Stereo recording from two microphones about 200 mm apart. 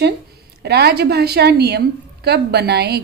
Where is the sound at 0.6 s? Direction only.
55° right (ahead or behind).